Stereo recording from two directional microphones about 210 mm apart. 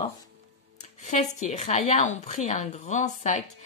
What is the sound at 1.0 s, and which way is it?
A woman's voice, 35° left (ahead or behind).